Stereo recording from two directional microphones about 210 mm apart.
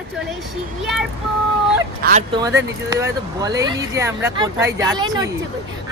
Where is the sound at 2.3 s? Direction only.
15° right (ahead or behind).